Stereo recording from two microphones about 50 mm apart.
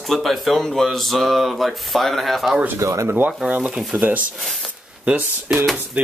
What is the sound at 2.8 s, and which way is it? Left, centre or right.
Speech, right.